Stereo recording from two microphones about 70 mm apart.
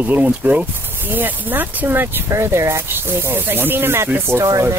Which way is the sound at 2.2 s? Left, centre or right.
Right.